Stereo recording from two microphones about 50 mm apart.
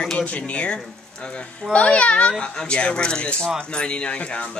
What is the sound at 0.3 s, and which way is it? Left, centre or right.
Speech, left.